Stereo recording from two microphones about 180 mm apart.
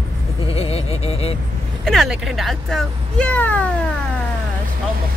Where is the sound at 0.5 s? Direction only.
35° left (ahead or behind).